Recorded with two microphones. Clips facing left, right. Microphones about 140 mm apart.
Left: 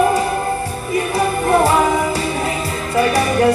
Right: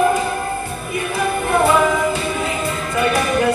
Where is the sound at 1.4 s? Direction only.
35° left (ahead or behind).